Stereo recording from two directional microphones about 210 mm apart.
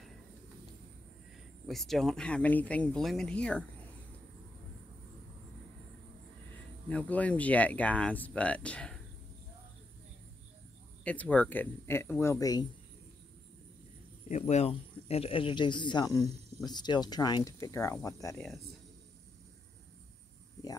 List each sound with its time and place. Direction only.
1.7 s speech: centre (ahead or behind)
6.9 s speech: 5° left (ahead or behind)
11.1 s speech: 5° left (ahead or behind)
14.5 s speech: 30° left (ahead or behind); by 18.5 s 15° left (ahead or behind)